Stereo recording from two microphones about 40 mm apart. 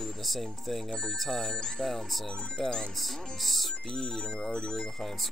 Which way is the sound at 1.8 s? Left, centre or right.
Centre.